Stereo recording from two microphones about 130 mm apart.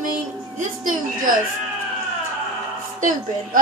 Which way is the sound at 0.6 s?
90° right.